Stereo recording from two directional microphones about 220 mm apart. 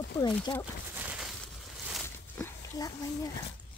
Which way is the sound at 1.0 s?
5° right (ahead or behind).